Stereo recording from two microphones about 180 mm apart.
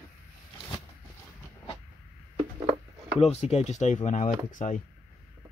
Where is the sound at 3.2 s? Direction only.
35° left (ahead or behind).